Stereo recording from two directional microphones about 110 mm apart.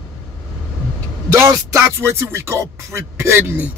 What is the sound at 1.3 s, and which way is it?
Music, 25° right (ahead or behind).